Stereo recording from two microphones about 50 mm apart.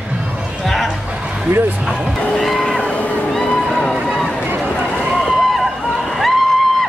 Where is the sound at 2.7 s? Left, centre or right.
Left.